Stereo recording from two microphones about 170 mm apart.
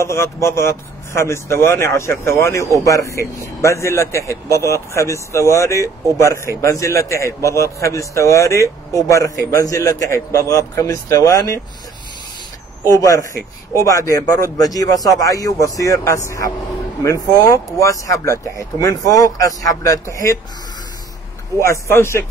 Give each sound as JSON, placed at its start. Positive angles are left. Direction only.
{"t": 0.0, "sound": "speech", "side_deg": 15}
{"t": 12.8, "sound": "speech", "side_deg": 20}
{"t": 21.5, "sound": "speech", "side_deg": 15}